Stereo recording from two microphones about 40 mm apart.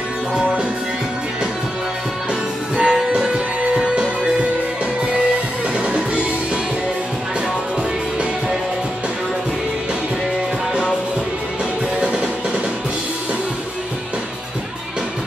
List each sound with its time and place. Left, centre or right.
2.7 s music: right
5.8 s music: right
12.0 s music: right